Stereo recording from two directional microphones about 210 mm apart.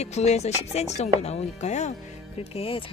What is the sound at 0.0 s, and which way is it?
Speech, 30° left (ahead or behind).